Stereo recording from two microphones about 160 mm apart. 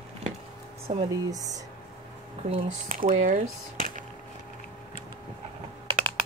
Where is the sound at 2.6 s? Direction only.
55° right (ahead or behind).